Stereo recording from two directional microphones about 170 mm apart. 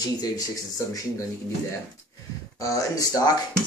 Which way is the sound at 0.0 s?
20° left (ahead or behind).